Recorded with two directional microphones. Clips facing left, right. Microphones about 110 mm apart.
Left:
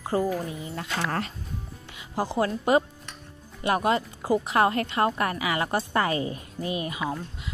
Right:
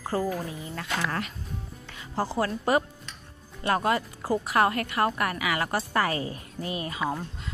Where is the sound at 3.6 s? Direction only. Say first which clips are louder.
Left 1 dB; 20° left (ahead or behind).